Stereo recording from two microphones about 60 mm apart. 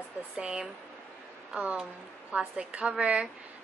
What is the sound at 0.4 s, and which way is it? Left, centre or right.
A woman's voice, centre.